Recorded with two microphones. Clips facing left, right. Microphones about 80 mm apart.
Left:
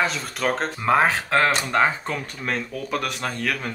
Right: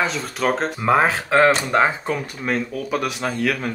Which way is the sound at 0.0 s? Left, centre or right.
Centre.